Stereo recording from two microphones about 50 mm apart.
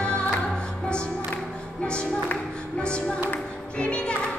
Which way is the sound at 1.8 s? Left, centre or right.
Left.